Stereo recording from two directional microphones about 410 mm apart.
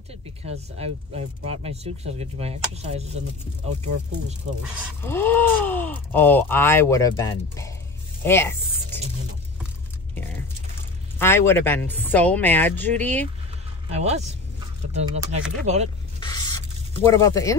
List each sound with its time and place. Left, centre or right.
0.1 s speech: centre
5.0 s speech: centre
11.1 s speech: centre
13.8 s speech: centre
16.2 s spray: centre